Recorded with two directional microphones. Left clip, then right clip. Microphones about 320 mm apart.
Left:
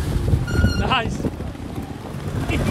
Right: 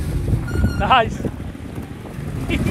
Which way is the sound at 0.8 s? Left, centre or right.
Centre.